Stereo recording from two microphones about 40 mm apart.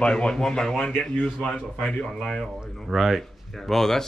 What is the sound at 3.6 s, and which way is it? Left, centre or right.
Speech, centre.